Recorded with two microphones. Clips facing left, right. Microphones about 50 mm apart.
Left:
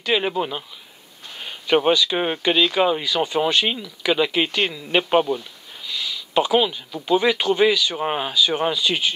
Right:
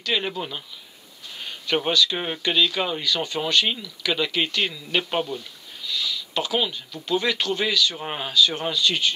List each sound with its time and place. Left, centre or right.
0.0 s speech: centre
2.8 s speech: centre